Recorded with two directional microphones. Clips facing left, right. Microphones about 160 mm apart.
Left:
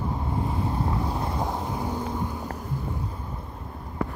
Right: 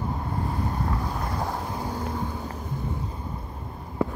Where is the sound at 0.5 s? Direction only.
25° left (ahead or behind).